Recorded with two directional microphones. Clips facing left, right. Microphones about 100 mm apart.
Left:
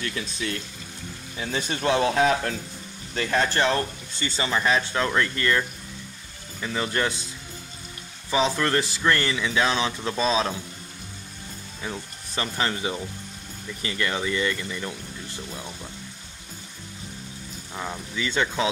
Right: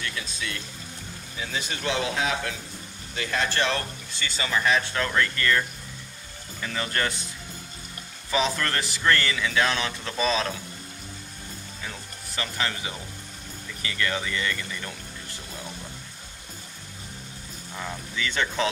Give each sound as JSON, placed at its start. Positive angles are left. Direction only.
{"t": 0.0, "sound": "speech", "side_deg": 35}
{"t": 3.5, "sound": "speech", "side_deg": 20}
{"t": 8.3, "sound": "speech", "side_deg": 20}
{"t": 11.8, "sound": "speech", "side_deg": 25}
{"t": 17.7, "sound": "speech", "side_deg": 20}